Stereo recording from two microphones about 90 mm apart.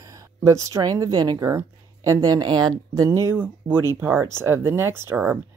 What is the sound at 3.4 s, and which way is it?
Speech, 25° right (ahead or behind).